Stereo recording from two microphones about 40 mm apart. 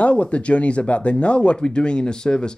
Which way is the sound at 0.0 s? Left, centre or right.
Left.